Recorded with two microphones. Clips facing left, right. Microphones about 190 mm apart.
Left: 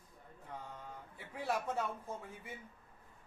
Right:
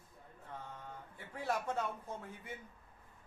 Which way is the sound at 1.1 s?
10° left (ahead or behind).